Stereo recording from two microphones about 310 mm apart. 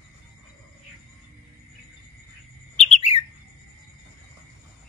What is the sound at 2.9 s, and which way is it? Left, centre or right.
Bird, left.